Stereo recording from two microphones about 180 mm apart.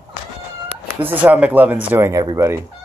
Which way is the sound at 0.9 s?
10° right (ahead or behind).